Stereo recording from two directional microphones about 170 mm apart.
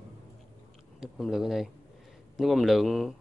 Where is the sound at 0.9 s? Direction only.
Centre (ahead or behind).